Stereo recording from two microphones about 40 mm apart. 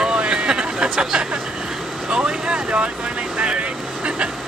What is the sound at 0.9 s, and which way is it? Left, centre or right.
Speech, right.